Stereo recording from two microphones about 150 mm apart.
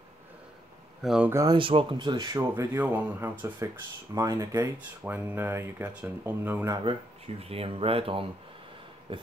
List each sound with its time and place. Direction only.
1.0 s speech: 5° right (ahead or behind)
1.3 s speech: 25° right (ahead or behind)
1.6 s speech: 35° right (ahead or behind)
2.3 s speech: 20° right (ahead or behind)
6.7 s speech: 35° right (ahead or behind)